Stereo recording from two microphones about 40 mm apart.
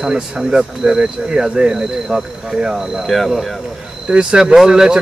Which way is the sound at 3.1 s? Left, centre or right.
Centre.